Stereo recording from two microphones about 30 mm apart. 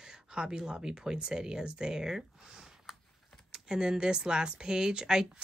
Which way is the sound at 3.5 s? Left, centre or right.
Right.